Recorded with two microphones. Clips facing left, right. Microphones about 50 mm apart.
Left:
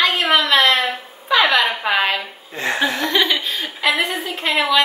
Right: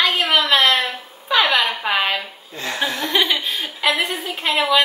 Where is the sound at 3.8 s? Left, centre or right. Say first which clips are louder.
Left 1 dB; centre.